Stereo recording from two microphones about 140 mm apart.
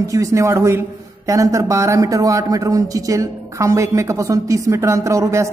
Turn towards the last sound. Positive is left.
turn(degrees=-20)  # may be behind; listen again after turning